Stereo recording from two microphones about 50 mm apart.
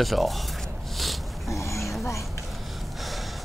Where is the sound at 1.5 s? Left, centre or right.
Left.